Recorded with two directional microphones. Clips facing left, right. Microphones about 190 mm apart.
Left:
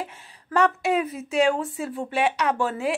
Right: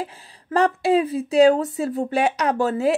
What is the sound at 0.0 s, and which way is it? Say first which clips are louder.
A woman's voice: right 3 dB; 35° right (ahead or behind).